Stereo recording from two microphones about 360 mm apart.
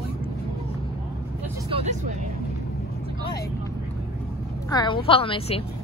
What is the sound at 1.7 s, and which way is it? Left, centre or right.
Vehicle, centre.